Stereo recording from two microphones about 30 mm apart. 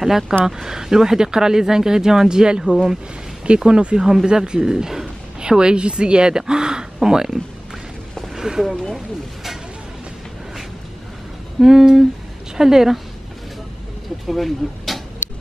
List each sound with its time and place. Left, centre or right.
0.0 s speech: centre
8.4 s speech: centre
8.9 s a sound: centre
11.6 s speech: centre
14.2 s speech: centre